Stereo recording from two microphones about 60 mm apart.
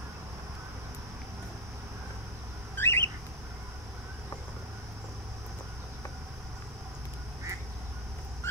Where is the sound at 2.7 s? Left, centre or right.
Left.